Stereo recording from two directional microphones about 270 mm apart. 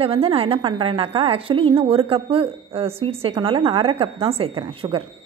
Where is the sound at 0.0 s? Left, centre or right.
Right.